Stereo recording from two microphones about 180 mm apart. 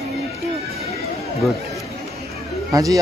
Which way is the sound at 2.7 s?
20° right (ahead or behind).